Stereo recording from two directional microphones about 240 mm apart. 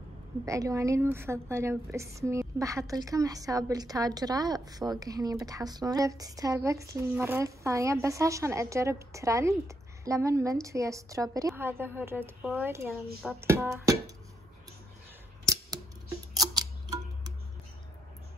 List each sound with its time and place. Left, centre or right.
0.5 s speech: centre
15.4 s scissors: centre
16.3 s music: centre